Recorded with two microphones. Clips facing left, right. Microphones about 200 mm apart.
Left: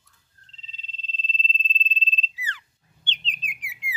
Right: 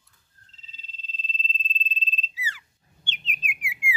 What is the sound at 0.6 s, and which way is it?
Frog, 10° right (ahead or behind).